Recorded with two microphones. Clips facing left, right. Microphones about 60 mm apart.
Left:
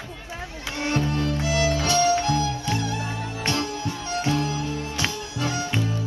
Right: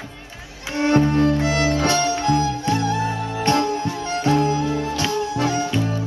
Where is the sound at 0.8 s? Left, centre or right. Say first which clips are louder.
Right 9 dB; right.